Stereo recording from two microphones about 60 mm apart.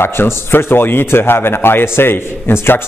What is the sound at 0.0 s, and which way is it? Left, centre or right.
A man's voice, left.